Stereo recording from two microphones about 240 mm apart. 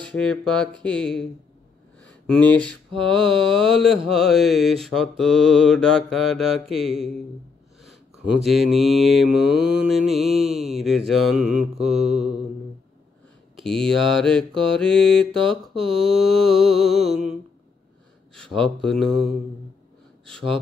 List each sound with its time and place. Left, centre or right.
0.0 s mantra: centre
2.0 s speech: centre
3.1 s mantra: centre
8.5 s mantra: centre
11.8 s mantra: right
13.6 s mantra: centre
18.3 s speech: centre